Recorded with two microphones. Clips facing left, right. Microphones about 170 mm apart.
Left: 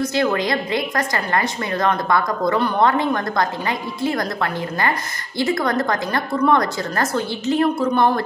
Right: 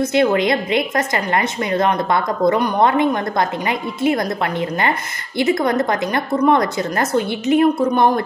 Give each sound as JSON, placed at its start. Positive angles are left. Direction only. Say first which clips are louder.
{"t": 0.0, "sound": "a woman's voice", "louder": "right 4 dB", "side_deg": -20}